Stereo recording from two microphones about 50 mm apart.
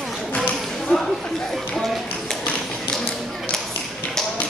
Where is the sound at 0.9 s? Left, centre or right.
Left.